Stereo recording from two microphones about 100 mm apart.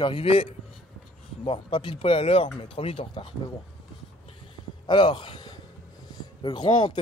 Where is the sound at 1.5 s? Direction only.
60° left (ahead or behind).